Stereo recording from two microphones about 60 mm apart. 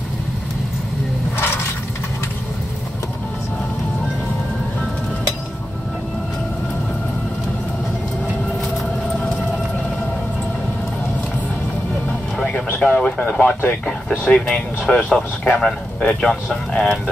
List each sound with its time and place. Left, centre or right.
12.8 s speech: left
14.4 s speech: centre